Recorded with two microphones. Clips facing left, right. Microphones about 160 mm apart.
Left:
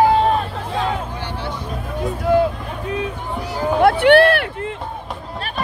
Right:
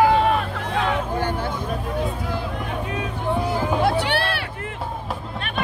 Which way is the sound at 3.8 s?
55° left (ahead or behind).